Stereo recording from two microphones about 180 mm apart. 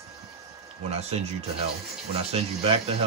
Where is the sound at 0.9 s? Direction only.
35° right (ahead or behind).